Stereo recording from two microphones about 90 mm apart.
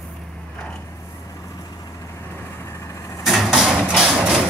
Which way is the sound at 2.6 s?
35° left (ahead or behind).